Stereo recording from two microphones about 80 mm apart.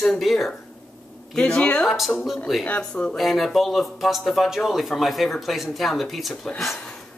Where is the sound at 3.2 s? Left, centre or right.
Centre.